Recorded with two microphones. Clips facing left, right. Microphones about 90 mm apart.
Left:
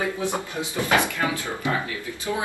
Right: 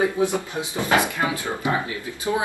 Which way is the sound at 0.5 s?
20° right (ahead or behind).